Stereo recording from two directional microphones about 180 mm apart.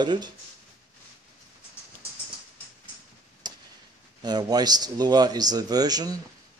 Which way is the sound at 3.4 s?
25° right (ahead or behind).